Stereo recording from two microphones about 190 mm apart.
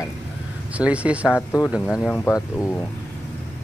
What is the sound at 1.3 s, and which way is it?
Speech, 10° left (ahead or behind).